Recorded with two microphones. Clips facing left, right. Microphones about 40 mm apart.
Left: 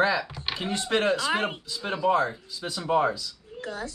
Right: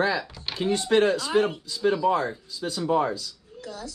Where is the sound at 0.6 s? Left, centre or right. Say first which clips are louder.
Right 5 dB; left.